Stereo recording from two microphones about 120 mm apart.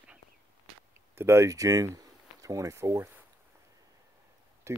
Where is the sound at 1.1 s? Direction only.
20° right (ahead or behind).